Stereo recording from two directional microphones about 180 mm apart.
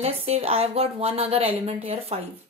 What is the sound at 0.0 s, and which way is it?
A woman's voice, 35° right (ahead or behind).